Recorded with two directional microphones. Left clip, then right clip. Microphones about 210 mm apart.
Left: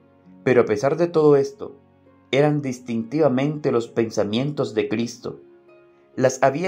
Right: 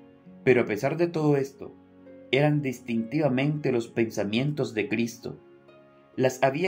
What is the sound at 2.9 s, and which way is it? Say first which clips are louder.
Speech: left 7 dB; 5° left (ahead or behind).